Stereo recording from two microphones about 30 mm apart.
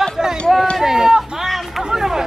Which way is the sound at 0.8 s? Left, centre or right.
Centre.